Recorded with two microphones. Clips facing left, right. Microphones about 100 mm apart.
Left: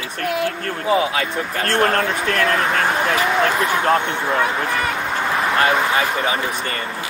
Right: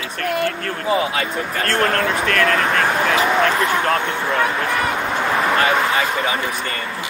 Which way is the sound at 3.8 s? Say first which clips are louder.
Left 2 dB; 20° left (ahead or behind).